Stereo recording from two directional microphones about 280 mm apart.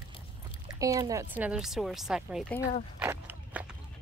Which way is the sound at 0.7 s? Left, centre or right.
Centre.